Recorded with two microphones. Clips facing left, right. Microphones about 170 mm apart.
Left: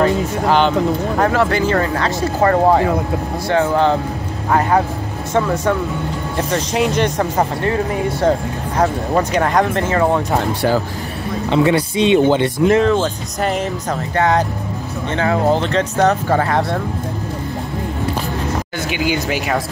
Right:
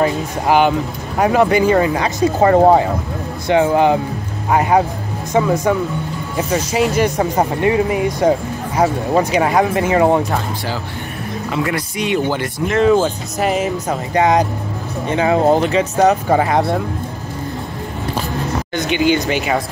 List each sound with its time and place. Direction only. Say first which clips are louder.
0.0 s speech: left 1 dB; 10° right (ahead or behind)
11.5 s speech: left 7 dB; 25° left (ahead or behind)
13.4 s speech: right 2 dB; 5° right (ahead or behind)
18.8 s speech: right 6 dB; 5° left (ahead or behind)